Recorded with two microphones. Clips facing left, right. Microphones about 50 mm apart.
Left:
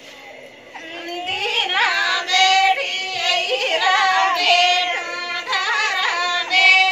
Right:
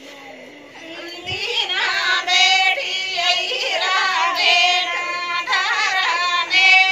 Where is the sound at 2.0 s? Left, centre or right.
Centre.